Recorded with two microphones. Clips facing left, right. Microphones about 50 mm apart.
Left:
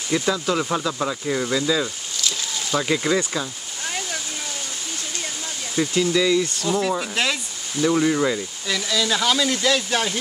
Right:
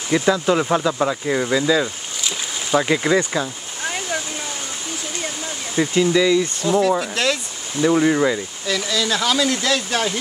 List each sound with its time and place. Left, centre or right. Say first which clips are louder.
0.1 s speech: right 5 dB; centre
3.3 s a sound: right 4 dB; centre
5.8 s speech: right 3 dB; centre
6.7 s speech: right 6 dB; centre
7.0 s speech: right 3 dB; centre
7.8 s speech: right 3 dB; centre
8.6 s speech: right 2 dB; centre